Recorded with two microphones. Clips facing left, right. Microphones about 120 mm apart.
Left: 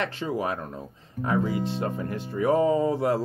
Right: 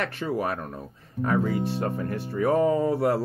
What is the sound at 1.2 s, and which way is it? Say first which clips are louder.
Speech: right 1 dB; 15° left (ahead or behind).